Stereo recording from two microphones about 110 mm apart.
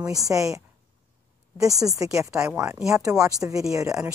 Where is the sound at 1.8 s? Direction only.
30° right (ahead or behind).